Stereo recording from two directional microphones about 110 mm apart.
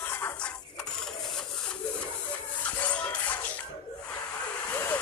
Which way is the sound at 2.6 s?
15° left (ahead or behind).